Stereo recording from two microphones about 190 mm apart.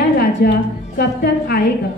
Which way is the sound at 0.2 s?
55° left (ahead or behind).